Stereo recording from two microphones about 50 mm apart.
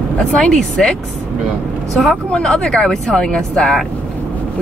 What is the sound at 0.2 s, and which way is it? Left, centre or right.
Speech, centre.